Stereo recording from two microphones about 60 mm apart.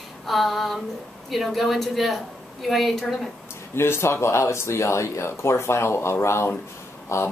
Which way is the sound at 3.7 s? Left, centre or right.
Left.